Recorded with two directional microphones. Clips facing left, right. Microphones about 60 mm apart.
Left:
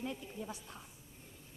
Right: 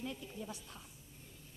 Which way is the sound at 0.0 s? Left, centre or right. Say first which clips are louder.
Left 2 dB; left.